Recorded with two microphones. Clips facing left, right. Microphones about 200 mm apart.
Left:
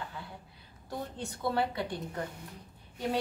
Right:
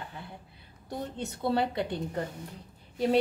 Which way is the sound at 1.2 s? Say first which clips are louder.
Right 3 dB; 25° right (ahead or behind).